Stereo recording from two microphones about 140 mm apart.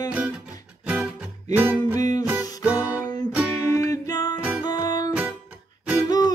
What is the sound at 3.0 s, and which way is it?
Music, 30° left (ahead or behind).